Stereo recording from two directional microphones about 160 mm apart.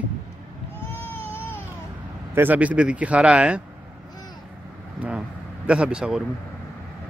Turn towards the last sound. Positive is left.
turn(degrees=-5)  # may be behind; listen again after turning